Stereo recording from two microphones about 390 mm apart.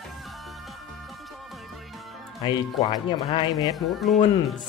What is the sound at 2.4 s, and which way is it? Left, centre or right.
Speech, centre.